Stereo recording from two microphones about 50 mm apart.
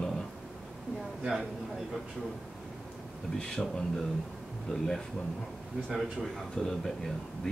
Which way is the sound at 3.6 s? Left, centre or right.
Centre.